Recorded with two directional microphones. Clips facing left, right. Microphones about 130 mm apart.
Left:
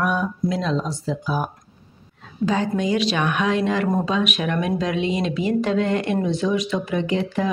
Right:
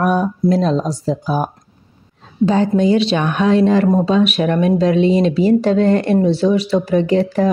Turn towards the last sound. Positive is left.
turn(degrees=-40)  # may be behind; listen again after turning